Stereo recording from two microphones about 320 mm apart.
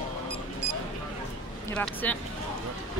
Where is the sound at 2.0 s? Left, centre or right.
Centre.